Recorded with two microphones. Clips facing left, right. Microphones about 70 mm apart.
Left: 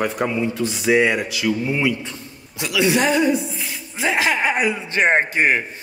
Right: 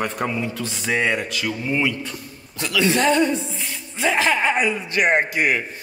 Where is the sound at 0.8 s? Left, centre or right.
Centre.